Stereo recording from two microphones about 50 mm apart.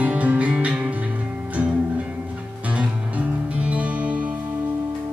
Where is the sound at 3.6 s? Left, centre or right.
Right.